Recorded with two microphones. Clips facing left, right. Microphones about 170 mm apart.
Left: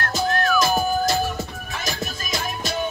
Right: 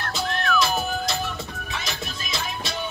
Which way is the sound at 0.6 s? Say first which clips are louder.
Left 4 dB; 45° left (ahead or behind).